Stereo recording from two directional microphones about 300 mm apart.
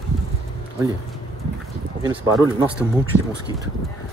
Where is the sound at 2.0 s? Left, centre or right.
Centre.